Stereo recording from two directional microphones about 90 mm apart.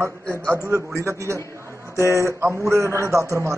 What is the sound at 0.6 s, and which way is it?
A man's voice, 35° right (ahead or behind).